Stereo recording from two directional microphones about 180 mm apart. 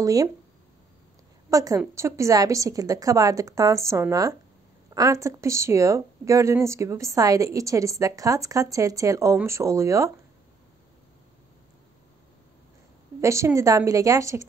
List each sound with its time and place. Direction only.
0.0 s a woman's voice: 20° right (ahead or behind)
1.5 s a woman's voice: 20° right (ahead or behind)
13.2 s speech: 15° right (ahead or behind)